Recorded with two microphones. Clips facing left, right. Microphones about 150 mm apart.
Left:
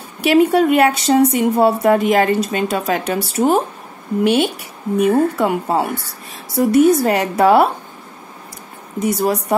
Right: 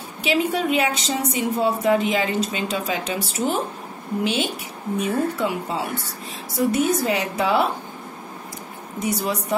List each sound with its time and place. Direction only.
0.2 s speech: 60° left (ahead or behind)
9.0 s speech: 60° left (ahead or behind)